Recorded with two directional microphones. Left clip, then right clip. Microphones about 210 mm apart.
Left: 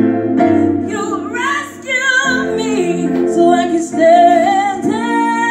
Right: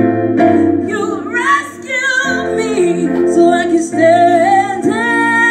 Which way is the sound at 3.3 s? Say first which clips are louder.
Right 1 dB; 10° right (ahead or behind).